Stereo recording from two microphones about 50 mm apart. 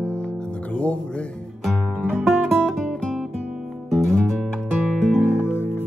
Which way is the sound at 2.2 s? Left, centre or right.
Centre.